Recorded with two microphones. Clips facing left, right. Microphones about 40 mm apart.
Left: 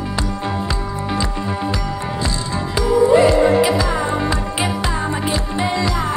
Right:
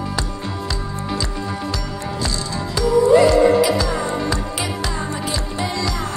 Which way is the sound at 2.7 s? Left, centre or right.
Left.